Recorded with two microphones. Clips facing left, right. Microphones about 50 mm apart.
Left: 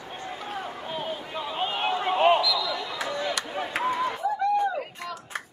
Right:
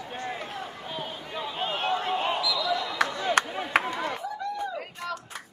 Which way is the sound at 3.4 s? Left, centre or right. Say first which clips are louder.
Right 8 dB; right.